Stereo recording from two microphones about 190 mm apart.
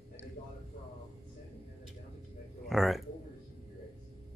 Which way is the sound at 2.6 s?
Centre (ahead or behind).